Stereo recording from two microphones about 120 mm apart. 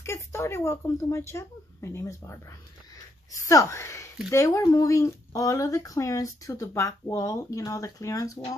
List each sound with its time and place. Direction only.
0.0 s speech: 20° left (ahead or behind)
3.4 s speech: 25° left (ahead or behind)